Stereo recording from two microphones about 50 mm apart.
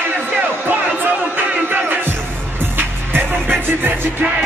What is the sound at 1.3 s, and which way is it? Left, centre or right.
Crowd, right.